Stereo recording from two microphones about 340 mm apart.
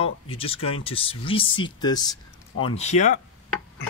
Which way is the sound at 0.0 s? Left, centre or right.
Centre.